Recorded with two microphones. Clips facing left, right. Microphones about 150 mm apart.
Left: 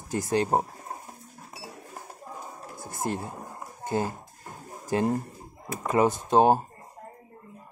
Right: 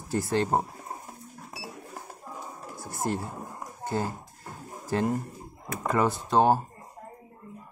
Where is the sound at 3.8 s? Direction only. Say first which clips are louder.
Left 2 dB; 15° left (ahead or behind).